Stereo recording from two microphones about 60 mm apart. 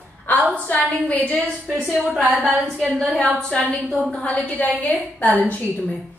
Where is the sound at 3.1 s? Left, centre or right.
Centre.